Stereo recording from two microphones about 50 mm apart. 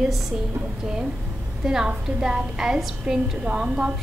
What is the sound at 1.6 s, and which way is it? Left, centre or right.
A woman's voice, centre.